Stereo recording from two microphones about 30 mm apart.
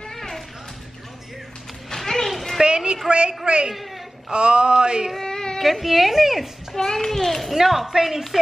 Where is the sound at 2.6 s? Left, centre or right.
Right.